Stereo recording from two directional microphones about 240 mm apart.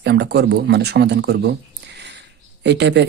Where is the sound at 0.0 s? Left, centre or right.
Right.